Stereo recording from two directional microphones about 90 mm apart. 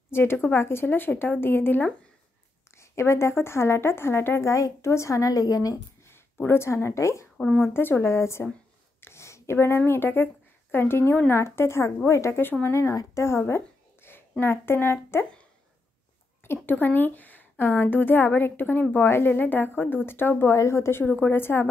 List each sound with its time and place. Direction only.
0.1 s a woman's voice: 25° left (ahead or behind); by 5.8 s 40° left (ahead or behind)
6.0 s speech: 25° left (ahead or behind)
7.3 s speech: 10° left (ahead or behind)
7.7 s a woman's voice: 25° left (ahead or behind)
16.6 s a woman's voice: 20° left (ahead or behind)
21.0 s a woman's voice: 20° left (ahead or behind)